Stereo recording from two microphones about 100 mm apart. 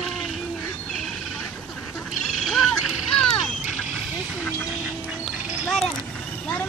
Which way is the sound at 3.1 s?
5° left (ahead or behind).